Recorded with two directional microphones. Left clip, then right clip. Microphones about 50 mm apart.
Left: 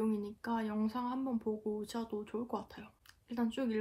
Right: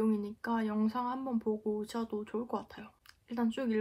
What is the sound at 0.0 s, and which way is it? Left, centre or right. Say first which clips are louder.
Speech: right 4 dB; right.